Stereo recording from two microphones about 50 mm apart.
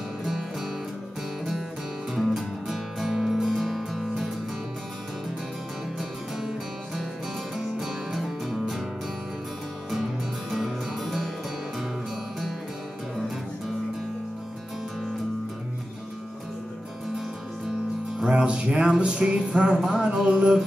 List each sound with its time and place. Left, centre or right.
2.2 s music: centre
7.5 s music: centre
10.5 s music: centre
18.2 s music: right